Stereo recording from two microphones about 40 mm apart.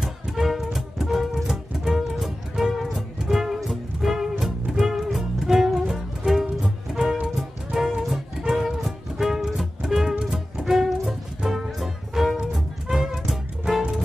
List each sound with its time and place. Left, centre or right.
0.0 s music: centre